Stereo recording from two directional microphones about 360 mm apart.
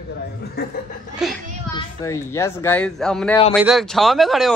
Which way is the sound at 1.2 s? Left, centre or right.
Centre.